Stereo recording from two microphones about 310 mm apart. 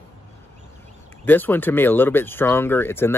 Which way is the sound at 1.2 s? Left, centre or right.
Centre.